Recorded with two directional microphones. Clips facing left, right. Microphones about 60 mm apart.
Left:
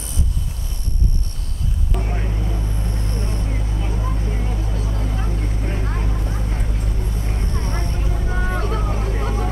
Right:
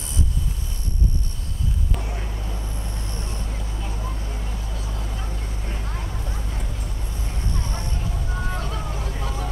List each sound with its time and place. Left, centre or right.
2.0 s vehicle: left
2.8 s vehicle: left
3.9 s vehicle: centre
4.3 s vehicle: left